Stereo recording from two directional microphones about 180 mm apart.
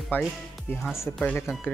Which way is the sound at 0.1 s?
10° left (ahead or behind).